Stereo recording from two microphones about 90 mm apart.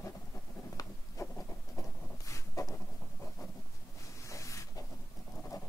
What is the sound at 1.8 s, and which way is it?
Zipper, 35° left (ahead or behind).